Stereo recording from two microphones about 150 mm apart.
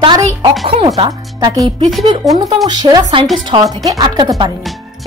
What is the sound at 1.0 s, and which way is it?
Speech, 30° right (ahead or behind).